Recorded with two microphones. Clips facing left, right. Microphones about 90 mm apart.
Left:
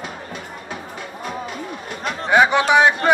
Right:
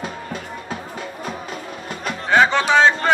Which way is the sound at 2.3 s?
15° left (ahead or behind).